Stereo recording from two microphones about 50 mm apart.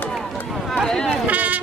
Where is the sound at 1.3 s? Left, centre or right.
Right.